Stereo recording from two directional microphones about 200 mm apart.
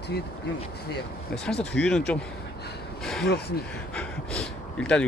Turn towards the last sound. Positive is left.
turn(degrees=5)  # may be behind; listen again after turning